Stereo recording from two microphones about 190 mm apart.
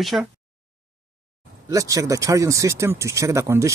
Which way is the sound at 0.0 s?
Centre (ahead or behind).